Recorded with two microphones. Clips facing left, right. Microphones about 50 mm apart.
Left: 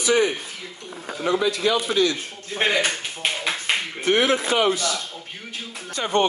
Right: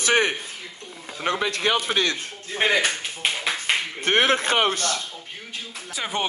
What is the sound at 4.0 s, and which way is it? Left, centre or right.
Speech, right.